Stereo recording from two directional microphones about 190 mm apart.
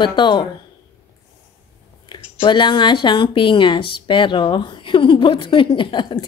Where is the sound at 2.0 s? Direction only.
25° left (ahead or behind).